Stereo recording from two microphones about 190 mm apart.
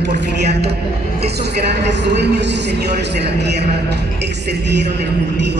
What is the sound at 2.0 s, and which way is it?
A man's voice, 65° right (ahead or behind).